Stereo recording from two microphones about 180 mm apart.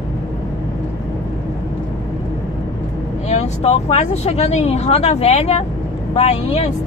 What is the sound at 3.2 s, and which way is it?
Speech, 35° left (ahead or behind).